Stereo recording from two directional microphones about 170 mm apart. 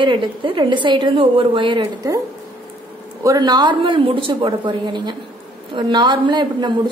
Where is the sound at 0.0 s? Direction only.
30° right (ahead or behind).